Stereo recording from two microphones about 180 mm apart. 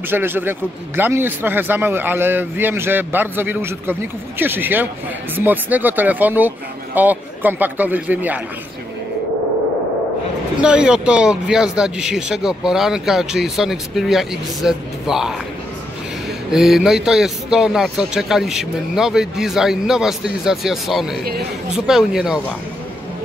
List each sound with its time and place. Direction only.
0.1 s a man's voice: 10° right (ahead or behind)
10.6 s a man's voice: 5° right (ahead or behind)
16.4 s a man's voice: centre (ahead or behind)
21.2 s a man's voice: 60° right (ahead or behind)
21.7 s a man's voice: 5° right (ahead or behind)